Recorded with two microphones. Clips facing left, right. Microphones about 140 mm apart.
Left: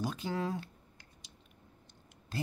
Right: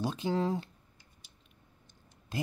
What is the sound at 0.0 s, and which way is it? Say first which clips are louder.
Speech: right 4 dB; 25° right (ahead or behind).